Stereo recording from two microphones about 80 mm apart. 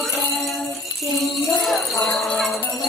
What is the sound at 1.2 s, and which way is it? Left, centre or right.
Jingle bell, centre.